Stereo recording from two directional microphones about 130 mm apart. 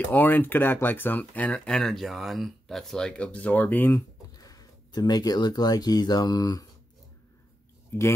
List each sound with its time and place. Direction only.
0.0 s speech: 15° left (ahead or behind)
4.4 s speech: 30° left (ahead or behind)
7.9 s speech: 15° left (ahead or behind)